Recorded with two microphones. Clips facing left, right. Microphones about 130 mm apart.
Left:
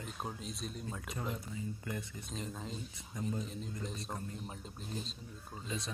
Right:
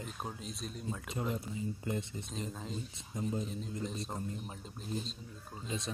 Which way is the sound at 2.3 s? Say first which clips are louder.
Right 1 dB; centre (ahead or behind).